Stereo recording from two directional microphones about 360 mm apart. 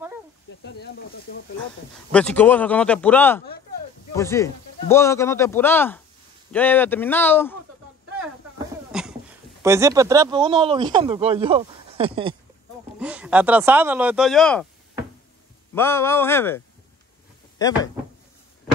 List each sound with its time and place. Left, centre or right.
0.7 s speech: left
2.1 s speech: centre
8.9 s a sound: centre
9.6 s speech: centre
13.0 s speech: centre
15.7 s speech: centre